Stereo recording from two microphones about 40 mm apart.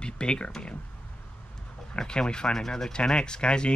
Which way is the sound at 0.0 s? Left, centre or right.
Left.